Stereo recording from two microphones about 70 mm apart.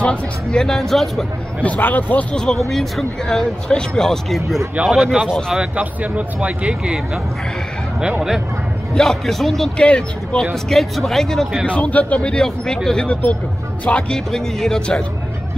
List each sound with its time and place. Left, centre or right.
0.0 s speech: centre
1.6 s a man's voice: left
2.3 s speech: centre
5.8 s speech: centre
8.9 s speech: centre
9.8 s speech: centre
10.4 s speech: centre
11.6 s a man's voice: centre